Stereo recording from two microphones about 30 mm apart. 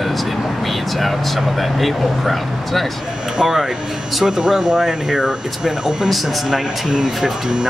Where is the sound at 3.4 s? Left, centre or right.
Right.